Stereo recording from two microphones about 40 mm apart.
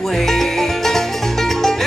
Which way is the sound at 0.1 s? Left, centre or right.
Centre.